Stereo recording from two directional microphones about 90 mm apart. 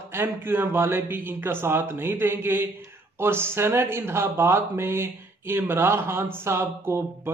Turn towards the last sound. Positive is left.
turn(degrees=-30)  # may be behind; listen again after turning